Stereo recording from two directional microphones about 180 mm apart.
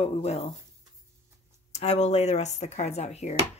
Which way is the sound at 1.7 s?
40° left (ahead or behind).